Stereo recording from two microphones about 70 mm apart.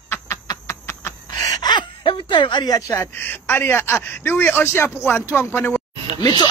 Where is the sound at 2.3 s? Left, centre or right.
Left.